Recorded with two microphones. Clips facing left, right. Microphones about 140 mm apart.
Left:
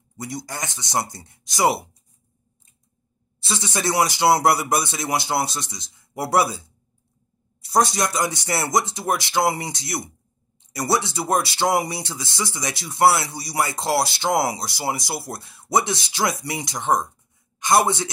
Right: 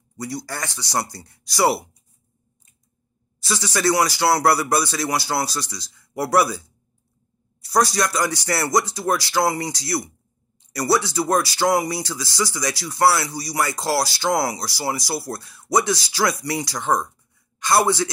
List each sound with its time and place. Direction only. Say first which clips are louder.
0.2 s speech: right 2 dB; 20° left (ahead or behind)
3.3 s speech: right 2 dB; 25° left (ahead or behind)